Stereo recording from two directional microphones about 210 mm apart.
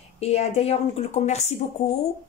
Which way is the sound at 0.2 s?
30° left (ahead or behind).